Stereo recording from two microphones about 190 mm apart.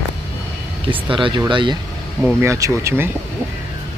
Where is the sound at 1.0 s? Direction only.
25° right (ahead or behind).